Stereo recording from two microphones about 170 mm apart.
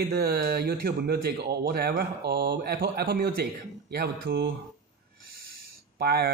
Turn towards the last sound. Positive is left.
turn(degrees=-70)  # may be behind; listen again after turning